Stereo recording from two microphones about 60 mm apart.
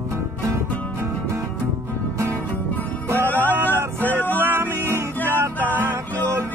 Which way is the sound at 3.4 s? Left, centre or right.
Right.